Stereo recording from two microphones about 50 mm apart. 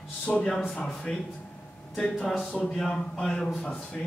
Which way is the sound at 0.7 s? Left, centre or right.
Centre.